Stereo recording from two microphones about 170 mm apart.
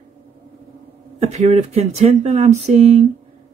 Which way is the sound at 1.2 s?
40° right (ahead or behind).